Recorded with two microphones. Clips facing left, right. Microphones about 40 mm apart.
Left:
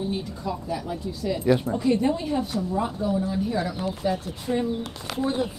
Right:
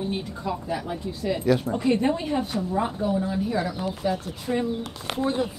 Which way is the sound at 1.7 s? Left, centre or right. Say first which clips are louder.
Even; right.